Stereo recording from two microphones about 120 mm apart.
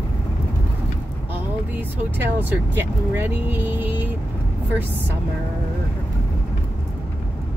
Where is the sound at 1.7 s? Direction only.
15° right (ahead or behind).